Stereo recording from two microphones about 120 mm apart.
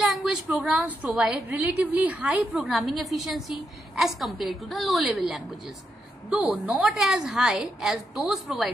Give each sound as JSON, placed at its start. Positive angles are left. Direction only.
{"t": 0.0, "sound": "a sound", "side_deg": 0}
{"t": 1.1, "sound": "a woman's voice", "side_deg": -5}
{"t": 2.6, "sound": "a woman's voice", "side_deg": 0}